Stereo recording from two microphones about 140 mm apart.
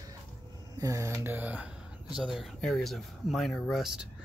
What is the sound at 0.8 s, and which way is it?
Speech, 20° right (ahead or behind).